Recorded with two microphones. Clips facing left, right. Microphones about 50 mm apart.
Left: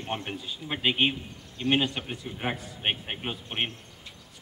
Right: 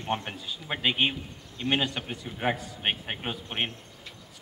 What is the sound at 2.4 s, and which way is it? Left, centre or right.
Speech, centre.